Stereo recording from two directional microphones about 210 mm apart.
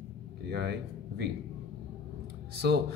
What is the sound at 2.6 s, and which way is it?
Speech, 50° right (ahead or behind).